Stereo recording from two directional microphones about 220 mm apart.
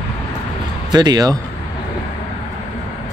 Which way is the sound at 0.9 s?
20° right (ahead or behind).